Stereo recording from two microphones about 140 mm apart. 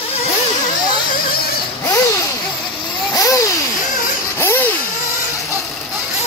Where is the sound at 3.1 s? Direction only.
20° left (ahead or behind).